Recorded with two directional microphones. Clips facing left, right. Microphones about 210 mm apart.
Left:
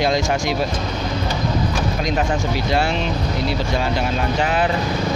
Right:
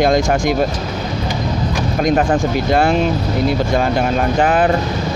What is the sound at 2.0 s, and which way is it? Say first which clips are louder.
Speech: right 9 dB; 50° right (ahead or behind).